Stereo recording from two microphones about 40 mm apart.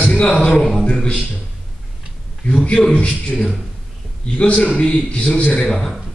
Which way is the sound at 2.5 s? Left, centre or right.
Left.